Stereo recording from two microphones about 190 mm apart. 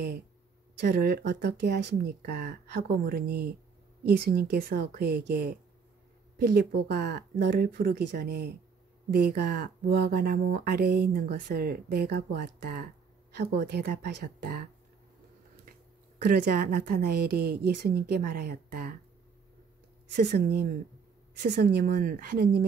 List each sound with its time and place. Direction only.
0.7 s speech: 55° right (ahead or behind)
16.3 s speech: 45° right (ahead or behind)
20.1 s speech: 55° right (ahead or behind)